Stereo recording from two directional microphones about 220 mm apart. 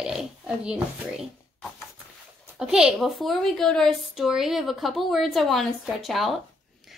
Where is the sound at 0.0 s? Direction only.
5° right (ahead or behind).